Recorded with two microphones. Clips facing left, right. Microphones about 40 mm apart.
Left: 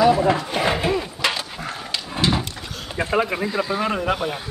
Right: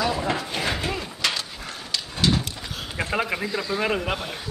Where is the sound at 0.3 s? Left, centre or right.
Centre.